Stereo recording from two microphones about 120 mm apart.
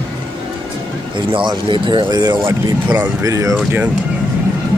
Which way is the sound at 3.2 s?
25° right (ahead or behind).